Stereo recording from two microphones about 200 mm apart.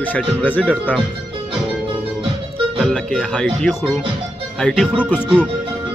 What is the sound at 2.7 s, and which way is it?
Speech, 5° left (ahead or behind).